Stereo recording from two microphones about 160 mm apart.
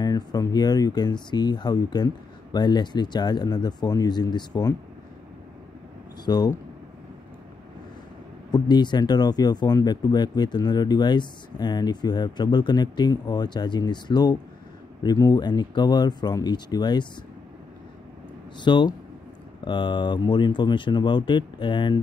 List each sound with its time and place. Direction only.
0.0 s speech: 25° left (ahead or behind)
6.2 s speech: 25° left (ahead or behind)
8.5 s speech: 25° left (ahead or behind)
18.6 s speech: 30° left (ahead or behind)